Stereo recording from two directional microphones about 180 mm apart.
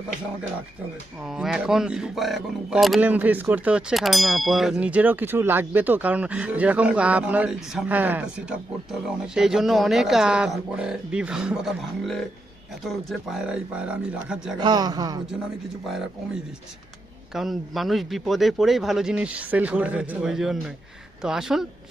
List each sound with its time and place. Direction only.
1.2 s speech: centre (ahead or behind)
14.6 s speech: 25° right (ahead or behind)
17.3 s speech: centre (ahead or behind)